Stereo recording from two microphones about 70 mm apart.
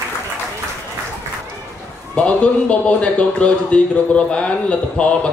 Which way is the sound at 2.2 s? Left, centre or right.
Centre.